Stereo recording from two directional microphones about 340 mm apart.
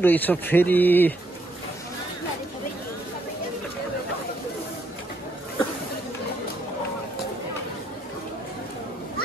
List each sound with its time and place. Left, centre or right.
0.0 s speech: centre